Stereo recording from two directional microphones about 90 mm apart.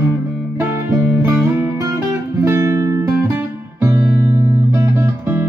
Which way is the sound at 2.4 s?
35° right (ahead or behind).